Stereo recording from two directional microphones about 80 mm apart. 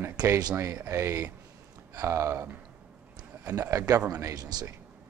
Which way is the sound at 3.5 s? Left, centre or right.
Right.